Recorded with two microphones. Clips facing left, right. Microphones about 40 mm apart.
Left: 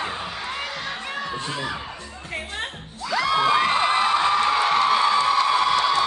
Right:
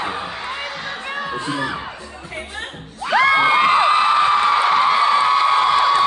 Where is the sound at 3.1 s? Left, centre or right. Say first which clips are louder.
Right 6 dB; right.